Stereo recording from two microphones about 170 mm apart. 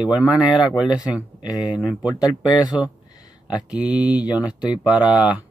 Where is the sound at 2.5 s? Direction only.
25° left (ahead or behind).